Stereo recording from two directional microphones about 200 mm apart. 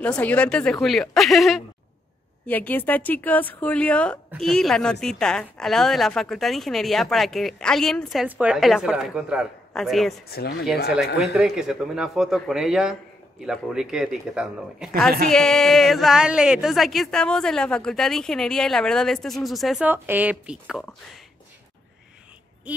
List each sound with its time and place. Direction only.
0.0 s a woman's voice: 5° left (ahead or behind)
10.3 s speech: 50° left (ahead or behind)
11.3 s speech: centre (ahead or behind)
22.7 s a sound: 5° right (ahead or behind)